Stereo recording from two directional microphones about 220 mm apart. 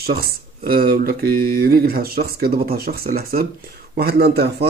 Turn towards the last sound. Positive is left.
turn(degrees=-45)  # may be behind; listen again after turning